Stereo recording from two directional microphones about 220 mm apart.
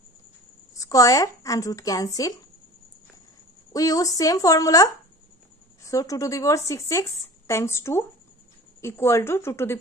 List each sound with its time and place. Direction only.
0.7 s speech: 15° left (ahead or behind)
3.7 s speech: 15° left (ahead or behind)